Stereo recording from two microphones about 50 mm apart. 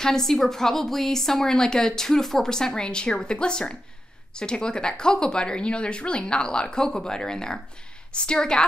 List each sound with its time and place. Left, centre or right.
0.0 s a woman's voice: centre